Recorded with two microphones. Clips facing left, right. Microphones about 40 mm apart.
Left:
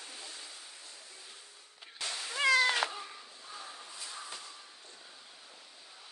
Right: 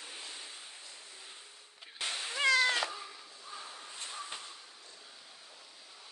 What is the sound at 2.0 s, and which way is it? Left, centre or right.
Cat, right.